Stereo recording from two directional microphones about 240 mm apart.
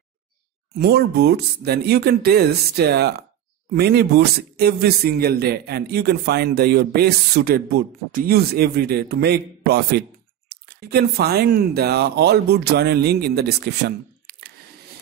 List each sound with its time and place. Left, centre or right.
0.7 s a man's voice: right